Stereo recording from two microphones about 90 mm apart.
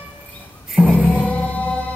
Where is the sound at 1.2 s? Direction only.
15° left (ahead or behind).